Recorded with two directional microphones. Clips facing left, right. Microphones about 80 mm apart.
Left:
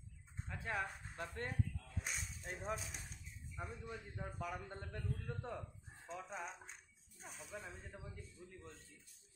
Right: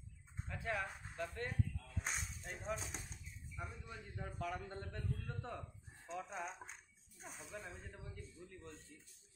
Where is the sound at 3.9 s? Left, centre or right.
Centre.